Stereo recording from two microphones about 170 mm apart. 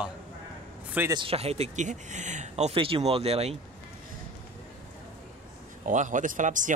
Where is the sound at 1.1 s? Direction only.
35° right (ahead or behind).